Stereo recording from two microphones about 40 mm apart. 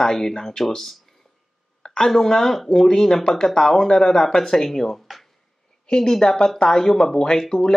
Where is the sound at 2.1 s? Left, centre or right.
Centre.